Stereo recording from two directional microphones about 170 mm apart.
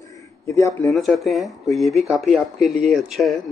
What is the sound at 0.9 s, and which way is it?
A man's voice, centre (ahead or behind).